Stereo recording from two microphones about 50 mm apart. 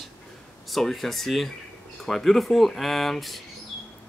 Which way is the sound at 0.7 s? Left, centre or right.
Centre.